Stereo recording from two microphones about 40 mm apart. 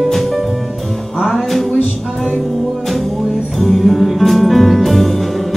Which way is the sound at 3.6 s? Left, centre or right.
Centre.